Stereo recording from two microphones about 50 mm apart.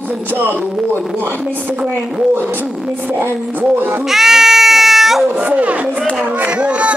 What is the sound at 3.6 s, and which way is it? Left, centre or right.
Speech, right.